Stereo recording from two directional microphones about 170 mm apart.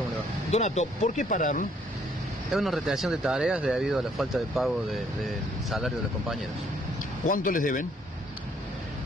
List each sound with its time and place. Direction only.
0.5 s speech: 40° left (ahead or behind)
2.5 s speech: centre (ahead or behind)
7.2 s speech: 50° left (ahead or behind)